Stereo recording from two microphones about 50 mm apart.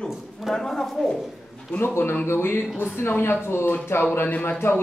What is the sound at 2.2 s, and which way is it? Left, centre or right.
Speech, left.